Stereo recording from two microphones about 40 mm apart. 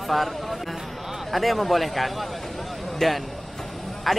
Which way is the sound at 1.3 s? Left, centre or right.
Centre.